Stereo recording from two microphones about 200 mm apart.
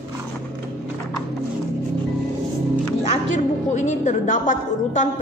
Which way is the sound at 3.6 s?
35° left (ahead or behind).